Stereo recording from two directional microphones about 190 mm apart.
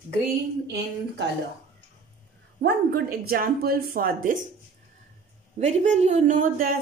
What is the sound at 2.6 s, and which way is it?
Speech, 50° right (ahead or behind).